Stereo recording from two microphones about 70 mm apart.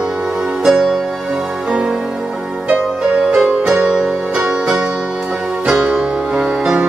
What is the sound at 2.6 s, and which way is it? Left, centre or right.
Music, centre.